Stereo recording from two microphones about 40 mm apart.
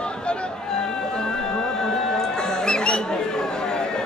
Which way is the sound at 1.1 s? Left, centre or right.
Centre.